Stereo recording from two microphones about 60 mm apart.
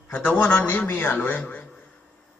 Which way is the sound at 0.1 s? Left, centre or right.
Left.